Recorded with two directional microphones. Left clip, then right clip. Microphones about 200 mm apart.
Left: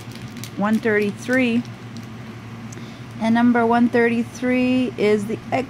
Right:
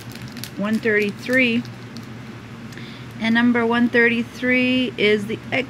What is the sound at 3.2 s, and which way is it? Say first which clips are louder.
Speech: left 1 dB; 10° left (ahead or behind).